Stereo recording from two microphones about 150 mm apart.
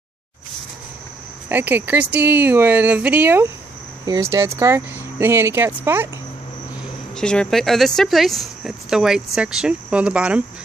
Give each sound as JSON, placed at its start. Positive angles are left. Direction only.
{"t": 1.5, "sound": "speech", "side_deg": -10}
{"t": 7.2, "sound": "speech", "side_deg": 5}